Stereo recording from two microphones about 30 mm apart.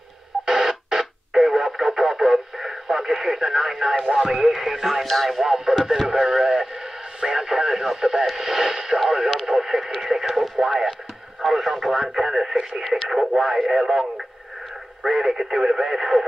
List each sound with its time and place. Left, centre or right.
0.5 s radio: centre
4.0 s speech: centre
5.0 s speech: centre
5.4 s speech: centre
6.0 s radio: centre
8.0 s speech: centre
10.0 s radio: centre
10.3 s radio: centre
11.4 s speech: centre